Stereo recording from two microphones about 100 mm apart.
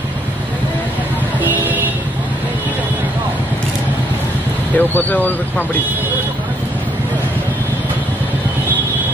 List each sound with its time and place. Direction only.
4.7 s speech: 15° left (ahead or behind)